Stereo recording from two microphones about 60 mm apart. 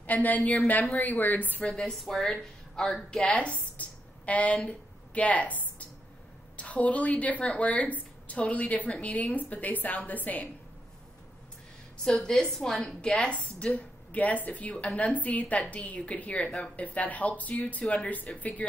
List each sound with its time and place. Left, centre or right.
0.0 s speech: left
1.7 s a woman's voice: centre
3.3 s a woman's voice: left
12.0 s a woman's voice: centre